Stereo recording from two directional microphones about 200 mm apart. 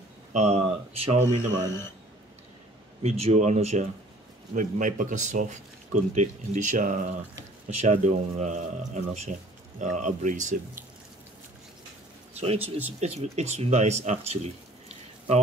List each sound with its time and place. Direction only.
0.3 s speech: 35° right (ahead or behind)
3.0 s speech: 30° right (ahead or behind)
12.4 s speech: 30° right (ahead or behind)